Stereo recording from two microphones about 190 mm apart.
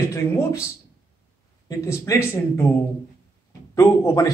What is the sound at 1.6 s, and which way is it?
Speech, 15° left (ahead or behind).